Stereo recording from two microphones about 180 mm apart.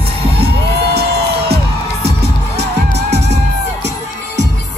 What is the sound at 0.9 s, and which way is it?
Music, 60° right (ahead or behind).